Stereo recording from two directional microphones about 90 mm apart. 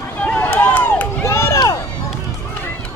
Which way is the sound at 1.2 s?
30° left (ahead or behind).